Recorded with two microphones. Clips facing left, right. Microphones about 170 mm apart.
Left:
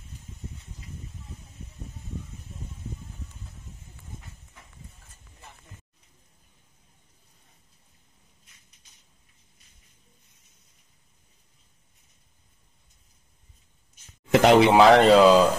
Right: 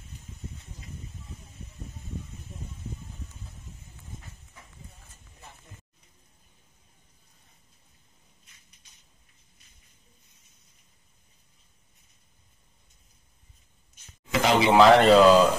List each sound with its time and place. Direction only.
14.3 s speech: 60° left (ahead or behind)
14.7 s speech: 5° left (ahead or behind)